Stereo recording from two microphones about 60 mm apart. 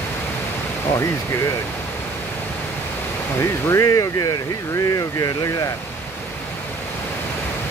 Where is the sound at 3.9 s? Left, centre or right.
Left.